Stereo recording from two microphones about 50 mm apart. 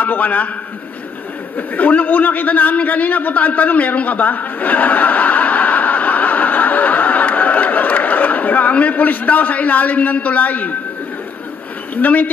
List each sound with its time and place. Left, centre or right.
0.0 s a man's voice: left
1.8 s a man's voice: left
11.9 s speech: left